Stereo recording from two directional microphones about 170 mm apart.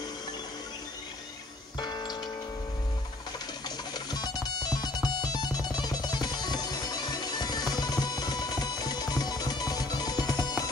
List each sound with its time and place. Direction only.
1.8 s music: 25° left (ahead or behind)
3.6 s music: 25° left (ahead or behind)